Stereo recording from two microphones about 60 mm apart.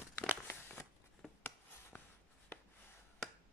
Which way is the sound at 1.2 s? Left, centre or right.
Centre.